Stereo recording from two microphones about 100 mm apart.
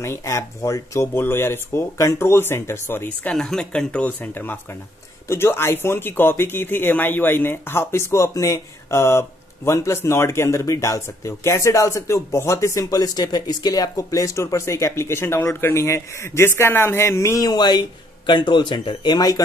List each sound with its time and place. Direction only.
0.0 s speech: 25° left (ahead or behind)
3.3 s speech: 5° left (ahead or behind); by 19.4 s 40° left (ahead or behind)